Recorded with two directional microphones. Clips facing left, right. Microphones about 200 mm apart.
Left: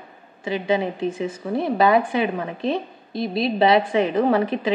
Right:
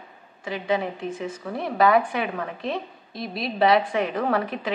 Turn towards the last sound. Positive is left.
turn(degrees=25)  # may be behind; listen again after turning